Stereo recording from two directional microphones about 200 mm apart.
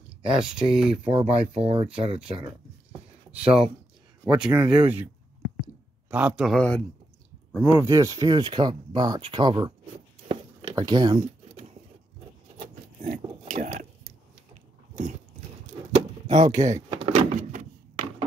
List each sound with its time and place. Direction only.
0.4 s a man's voice: 5° right (ahead or behind)
1.0 s speech: 30° right (ahead or behind)
4.4 s a man's voice: 5° right (ahead or behind)
7.9 s speech: 15° right (ahead or behind)
10.2 s a sound: 25° right (ahead or behind)
12.5 s a sound: 40° right (ahead or behind)
14.5 s biting: 40° right (ahead or behind)
15.9 s door: 35° right (ahead or behind)
17.4 s a sound: 40° right (ahead or behind)